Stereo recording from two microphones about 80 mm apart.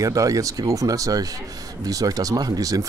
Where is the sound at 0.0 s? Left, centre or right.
Right.